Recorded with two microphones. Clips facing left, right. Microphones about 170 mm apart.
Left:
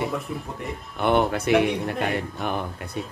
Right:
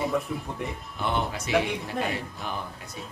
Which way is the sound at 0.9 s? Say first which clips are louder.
Left 8 dB; 60° left (ahead or behind).